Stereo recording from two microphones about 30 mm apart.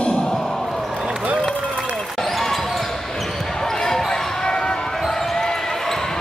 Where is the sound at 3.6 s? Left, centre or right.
Centre.